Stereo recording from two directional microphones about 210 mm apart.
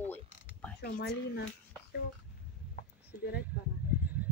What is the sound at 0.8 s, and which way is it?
Speech, 45° left (ahead or behind).